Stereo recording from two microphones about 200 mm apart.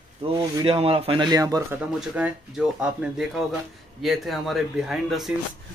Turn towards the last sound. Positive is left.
turn(degrees=0)  # may be behind; listen again after turning